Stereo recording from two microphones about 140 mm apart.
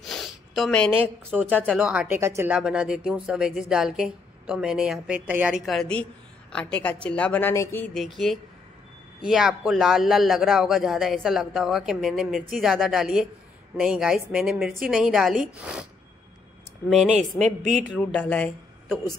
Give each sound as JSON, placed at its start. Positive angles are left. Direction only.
{"t": 0.0, "sound": "a sound", "side_deg": 0}
{"t": 1.0, "sound": "speech", "side_deg": -10}
{"t": 1.5, "sound": "speech", "side_deg": 10}
{"t": 1.8, "sound": "speech", "side_deg": -5}
{"t": 2.5, "sound": "a man's voice", "side_deg": -5}
{"t": 7.9, "sound": "a man's voice", "side_deg": 0}
{"t": 16.9, "sound": "a man's voice", "side_deg": 0}
{"t": 17.6, "sound": "a woman's voice", "side_deg": -60}
{"t": 18.2, "sound": "speech", "side_deg": 10}